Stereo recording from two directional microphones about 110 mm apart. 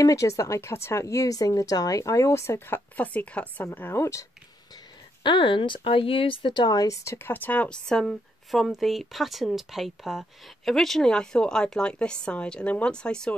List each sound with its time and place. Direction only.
0.0 s speech: 30° left (ahead or behind)
5.2 s speech: 45° left (ahead or behind); by 13.3 s 5° left (ahead or behind)